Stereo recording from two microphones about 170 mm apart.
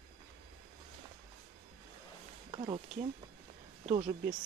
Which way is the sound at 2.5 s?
30° right (ahead or behind).